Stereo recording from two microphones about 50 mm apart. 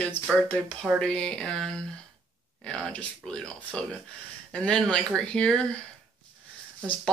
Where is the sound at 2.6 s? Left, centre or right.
Centre.